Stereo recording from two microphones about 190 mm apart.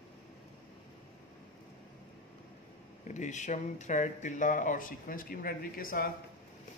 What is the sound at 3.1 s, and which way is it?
Speech, 40° left (ahead or behind).